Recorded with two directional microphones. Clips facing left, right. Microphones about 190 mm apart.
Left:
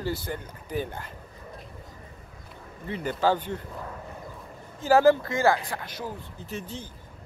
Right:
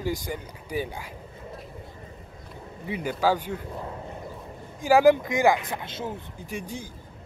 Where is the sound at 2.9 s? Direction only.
10° right (ahead or behind).